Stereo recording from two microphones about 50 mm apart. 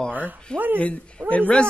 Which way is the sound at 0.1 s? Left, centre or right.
Right.